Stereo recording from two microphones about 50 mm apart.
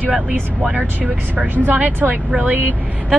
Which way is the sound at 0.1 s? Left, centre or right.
Right.